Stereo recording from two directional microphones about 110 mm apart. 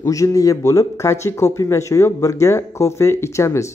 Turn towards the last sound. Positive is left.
turn(degrees=25)  # may be behind; listen again after turning